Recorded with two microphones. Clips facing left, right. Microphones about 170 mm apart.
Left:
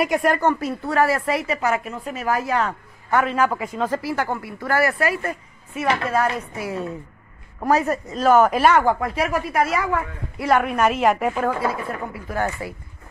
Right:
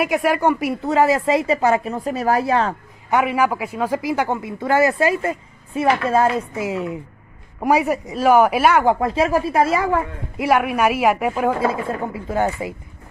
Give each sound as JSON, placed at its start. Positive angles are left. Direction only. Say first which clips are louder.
{"t": 0.0, "sound": "a woman's voice", "louder": "right 1 dB", "side_deg": -5}
{"t": 3.1, "sound": "a man's voice", "louder": "right 2 dB", "side_deg": -15}
{"t": 8.8, "sound": "a woman's voice", "louder": "right 4 dB", "side_deg": -25}
{"t": 10.4, "sound": "a man's voice", "louder": "right 1 dB", "side_deg": -10}
{"t": 11.6, "sound": "a woman's voice", "louder": "right 4 dB", "side_deg": -25}